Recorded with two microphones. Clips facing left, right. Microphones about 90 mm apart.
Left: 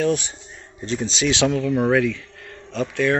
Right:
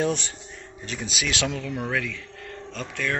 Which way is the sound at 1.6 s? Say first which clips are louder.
Left 10 dB; 35° left (ahead or behind).